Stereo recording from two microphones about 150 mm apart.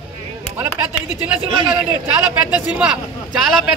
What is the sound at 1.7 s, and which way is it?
A man's voice, 10° right (ahead or behind).